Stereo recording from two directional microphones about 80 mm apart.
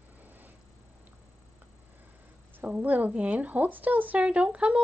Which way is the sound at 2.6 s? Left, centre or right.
Right.